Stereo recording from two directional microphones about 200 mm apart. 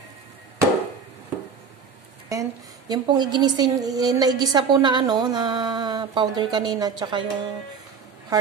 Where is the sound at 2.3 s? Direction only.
20° right (ahead or behind).